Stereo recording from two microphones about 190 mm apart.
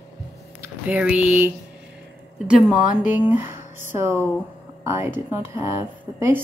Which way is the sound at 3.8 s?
10° right (ahead or behind).